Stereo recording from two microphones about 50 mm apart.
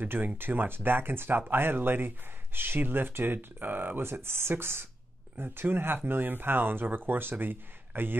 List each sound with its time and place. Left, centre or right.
0.0 s speech: right